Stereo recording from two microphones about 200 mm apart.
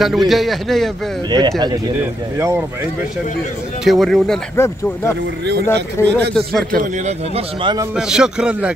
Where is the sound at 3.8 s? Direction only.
Centre (ahead or behind).